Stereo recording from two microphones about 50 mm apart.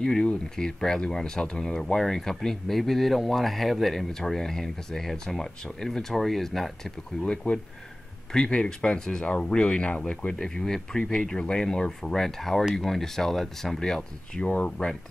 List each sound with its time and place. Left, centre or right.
0.0 s speech: centre
7.5 s speech: left
14.4 s speech: left